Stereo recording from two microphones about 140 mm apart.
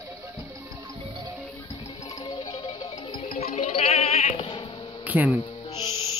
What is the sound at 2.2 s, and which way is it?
Music, 35° left (ahead or behind).